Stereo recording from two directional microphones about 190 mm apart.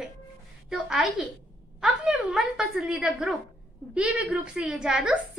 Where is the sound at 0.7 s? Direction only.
5° right (ahead or behind).